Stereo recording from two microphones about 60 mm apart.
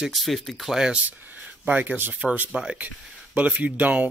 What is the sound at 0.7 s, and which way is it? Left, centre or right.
Speech, centre.